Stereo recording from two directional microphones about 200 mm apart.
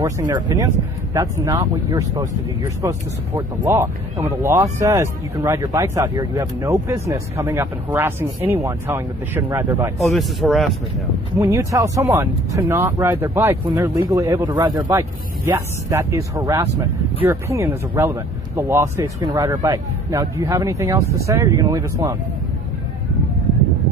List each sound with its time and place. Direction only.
0.0 s speech: 20° right (ahead or behind)
9.9 s speech: centre (ahead or behind)
11.3 s speech: 15° right (ahead or behind)